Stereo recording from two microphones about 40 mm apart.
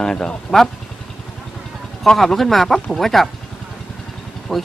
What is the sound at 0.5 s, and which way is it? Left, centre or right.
Speech, centre.